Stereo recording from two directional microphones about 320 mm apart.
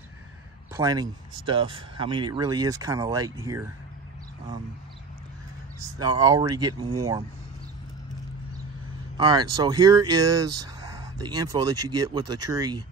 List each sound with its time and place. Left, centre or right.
0.7 s speech: centre
5.8 s speech: centre
9.1 s speech: centre